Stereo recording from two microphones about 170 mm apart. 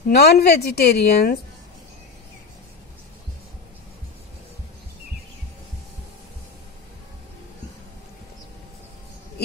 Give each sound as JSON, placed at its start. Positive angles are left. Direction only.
{"t": 0.1, "sound": "a woman's voice", "side_deg": 65}